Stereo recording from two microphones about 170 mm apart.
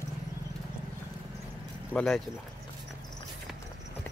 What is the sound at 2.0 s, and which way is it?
Speech, 5° left (ahead or behind).